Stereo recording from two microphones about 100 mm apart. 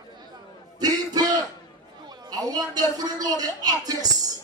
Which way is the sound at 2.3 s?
40° right (ahead or behind).